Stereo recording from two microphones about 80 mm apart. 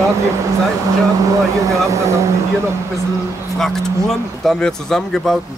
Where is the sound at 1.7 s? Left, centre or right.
Right.